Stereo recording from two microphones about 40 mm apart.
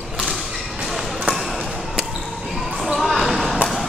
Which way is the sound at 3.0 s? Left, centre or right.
Centre.